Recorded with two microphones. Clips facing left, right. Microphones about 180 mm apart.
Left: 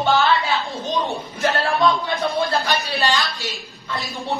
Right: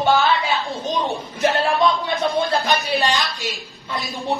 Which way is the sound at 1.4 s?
20° right (ahead or behind).